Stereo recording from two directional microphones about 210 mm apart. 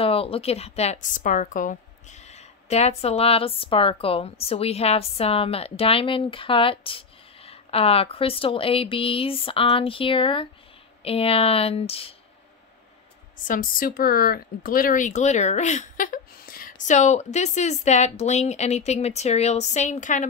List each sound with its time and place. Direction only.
0.0 s a woman's voice: 25° left (ahead or behind)
13.5 s speech: 40° left (ahead or behind)